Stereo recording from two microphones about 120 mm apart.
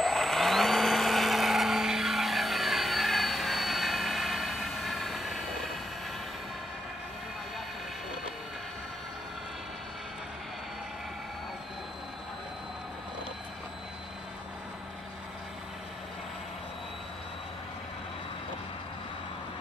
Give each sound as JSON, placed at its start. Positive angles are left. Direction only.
{"t": 0.0, "sound": "vehicle", "side_deg": 0}